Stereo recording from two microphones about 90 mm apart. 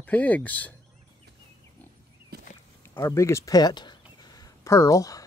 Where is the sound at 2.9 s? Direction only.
30° left (ahead or behind).